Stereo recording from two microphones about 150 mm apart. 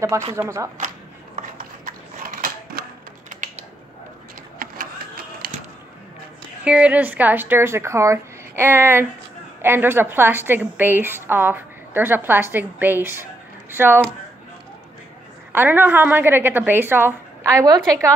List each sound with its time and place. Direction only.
0.3 s speech: 20° right (ahead or behind)
0.7 s a sound: 55° right (ahead or behind)
3.3 s typing: 55° right (ahead or behind)
4.6 s a sound: 75° right (ahead or behind)
6.6 s a woman's voice: 10° right (ahead or behind)
15.5 s a woman's voice: 15° right (ahead or behind)